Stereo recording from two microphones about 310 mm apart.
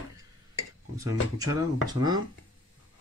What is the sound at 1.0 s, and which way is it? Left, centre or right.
Speech, centre.